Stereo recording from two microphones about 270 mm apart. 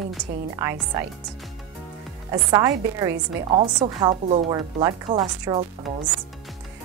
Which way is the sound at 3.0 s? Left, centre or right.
Centre.